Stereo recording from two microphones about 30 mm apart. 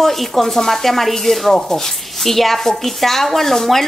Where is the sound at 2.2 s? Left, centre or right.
Centre.